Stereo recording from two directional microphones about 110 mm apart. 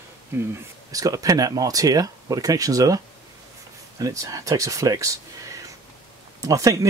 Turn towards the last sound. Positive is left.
turn(degrees=-30)  # may be behind; listen again after turning